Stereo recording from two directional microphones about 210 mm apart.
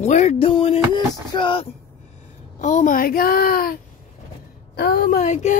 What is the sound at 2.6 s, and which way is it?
Speech, 40° left (ahead or behind).